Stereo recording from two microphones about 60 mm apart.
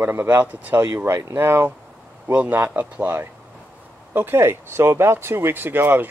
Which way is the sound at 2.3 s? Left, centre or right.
Right.